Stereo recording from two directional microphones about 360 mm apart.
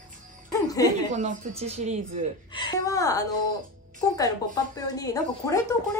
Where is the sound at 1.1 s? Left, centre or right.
Centre.